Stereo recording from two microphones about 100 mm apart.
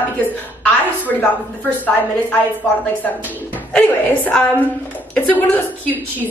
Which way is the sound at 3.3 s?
15° left (ahead or behind).